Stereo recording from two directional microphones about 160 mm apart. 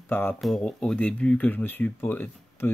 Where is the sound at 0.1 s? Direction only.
15° left (ahead or behind).